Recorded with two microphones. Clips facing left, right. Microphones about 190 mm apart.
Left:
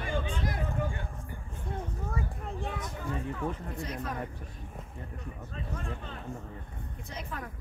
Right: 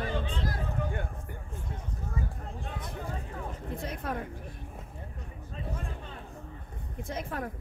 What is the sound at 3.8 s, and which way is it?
Speech, 55° right (ahead or behind).